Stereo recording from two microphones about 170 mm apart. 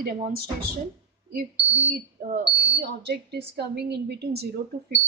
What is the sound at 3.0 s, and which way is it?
Speech, 75° right (ahead or behind).